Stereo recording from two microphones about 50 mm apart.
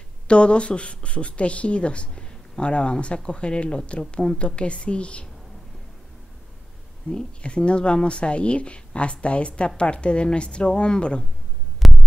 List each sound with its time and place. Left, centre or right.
0.3 s a woman's voice: left
7.1 s speech: centre
11.8 s hum: centre